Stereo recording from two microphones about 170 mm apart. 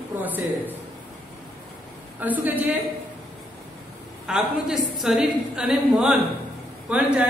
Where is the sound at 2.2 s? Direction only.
10° right (ahead or behind).